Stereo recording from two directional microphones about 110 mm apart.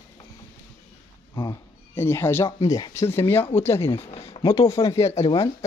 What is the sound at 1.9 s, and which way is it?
Speech, 20° left (ahead or behind).